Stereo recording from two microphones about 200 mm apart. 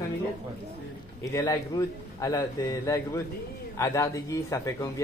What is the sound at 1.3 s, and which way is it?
A man's voice, 15° left (ahead or behind).